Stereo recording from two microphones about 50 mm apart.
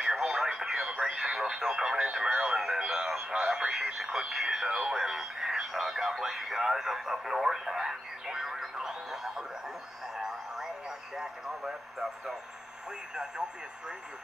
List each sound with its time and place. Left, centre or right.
0.0 s radio: centre
3.3 s speech: centre
10.1 s radio: centre
13.1 s speech: centre